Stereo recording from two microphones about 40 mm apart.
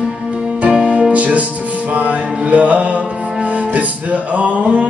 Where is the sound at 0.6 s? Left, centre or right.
Right.